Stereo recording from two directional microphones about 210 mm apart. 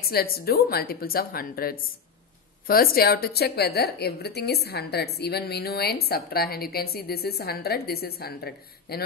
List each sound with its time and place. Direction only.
0.0 s a woman's voice: 45° left (ahead or behind)